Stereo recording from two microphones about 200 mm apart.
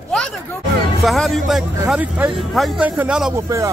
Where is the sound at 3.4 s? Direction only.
15° right (ahead or behind).